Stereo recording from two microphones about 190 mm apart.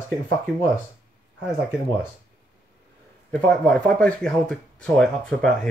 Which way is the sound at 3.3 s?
5° left (ahead or behind).